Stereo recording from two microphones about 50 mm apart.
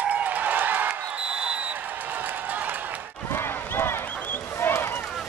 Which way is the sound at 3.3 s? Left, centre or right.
Left.